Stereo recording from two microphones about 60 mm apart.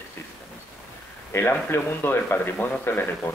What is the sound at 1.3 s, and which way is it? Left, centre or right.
Speech, left.